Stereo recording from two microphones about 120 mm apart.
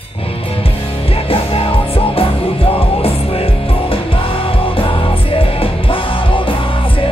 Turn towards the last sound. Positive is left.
turn(degrees=45)  # may be behind; listen again after turning